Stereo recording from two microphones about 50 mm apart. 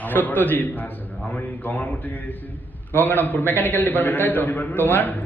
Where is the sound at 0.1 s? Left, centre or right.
Left.